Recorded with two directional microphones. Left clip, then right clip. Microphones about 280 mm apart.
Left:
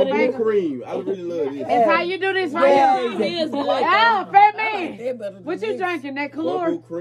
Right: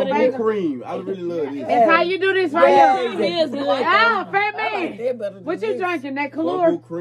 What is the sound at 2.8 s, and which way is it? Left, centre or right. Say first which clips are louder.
Speech: right 1 dB; right.